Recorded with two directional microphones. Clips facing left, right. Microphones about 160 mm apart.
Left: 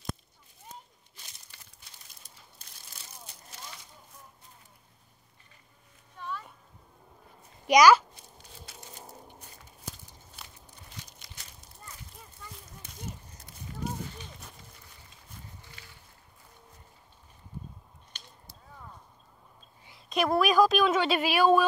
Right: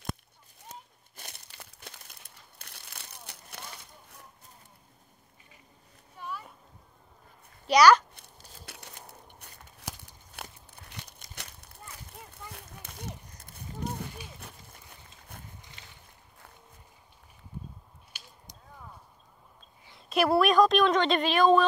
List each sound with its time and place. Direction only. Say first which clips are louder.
1.1 s crumpling: right 8 dB; 60° right (ahead or behind)
6.1 s a sound: left 1 dB; 10° right (ahead or behind)
7.6 s a child's voice: left 1 dB; 10° left (ahead or behind)
8.1 s a sound: left 1 dB; 65° right (ahead or behind)
9.4 s crumpling: right 2 dB; 70° right (ahead or behind); by 11.3 s 55° right (ahead or behind)
11.3 s a sound: right 6 dB; 65° right (ahead or behind)
15.6 s boat: even; 20° right (ahead or behind)
18.1 s whip: even; 5° right (ahead or behind)
20.1 s a woman's voice: right 2 dB; 5° right (ahead or behind)